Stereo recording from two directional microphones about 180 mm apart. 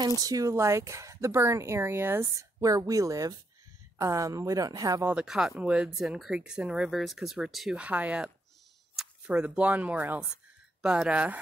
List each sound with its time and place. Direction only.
0.0 s speech: 20° right (ahead or behind)
5.1 s speech: 5° right (ahead or behind)